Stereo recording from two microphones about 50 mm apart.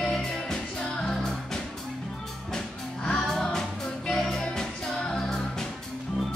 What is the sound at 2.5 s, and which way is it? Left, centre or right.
Music, centre.